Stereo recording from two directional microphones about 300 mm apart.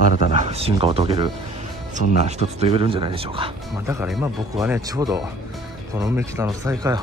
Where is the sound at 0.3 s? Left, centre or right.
Right.